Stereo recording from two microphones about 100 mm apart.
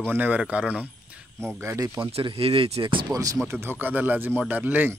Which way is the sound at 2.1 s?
70° right (ahead or behind).